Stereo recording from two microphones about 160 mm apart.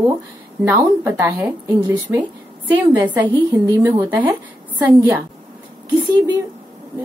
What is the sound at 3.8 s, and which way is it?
Speech, 10° right (ahead or behind).